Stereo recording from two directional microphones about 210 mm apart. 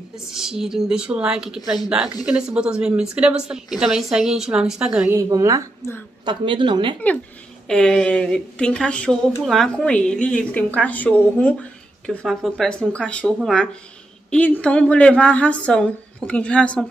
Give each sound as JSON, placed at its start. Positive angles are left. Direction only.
{"t": 0.3, "sound": "speech", "side_deg": 0}
{"t": 5.8, "sound": "a woman's voice", "side_deg": 10}
{"t": 6.2, "sound": "speech", "side_deg": -25}
{"t": 7.6, "sound": "speech", "side_deg": 5}